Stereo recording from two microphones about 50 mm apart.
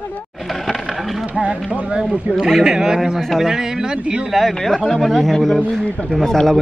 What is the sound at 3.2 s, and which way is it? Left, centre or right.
Speech, centre.